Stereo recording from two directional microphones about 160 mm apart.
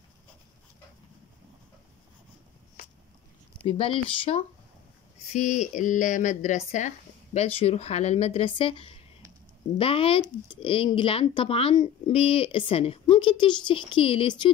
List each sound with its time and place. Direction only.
3.5 s speech: 35° left (ahead or behind)
5.3 s a woman's voice: 45° left (ahead or behind)